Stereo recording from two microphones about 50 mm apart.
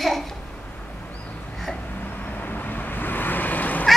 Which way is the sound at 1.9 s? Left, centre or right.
Left.